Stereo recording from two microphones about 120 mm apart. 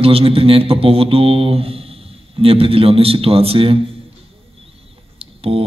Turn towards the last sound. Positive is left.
turn(degrees=-55)  # may be behind; listen again after turning